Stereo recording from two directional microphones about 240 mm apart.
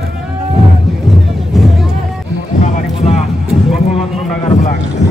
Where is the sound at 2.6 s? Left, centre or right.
Left.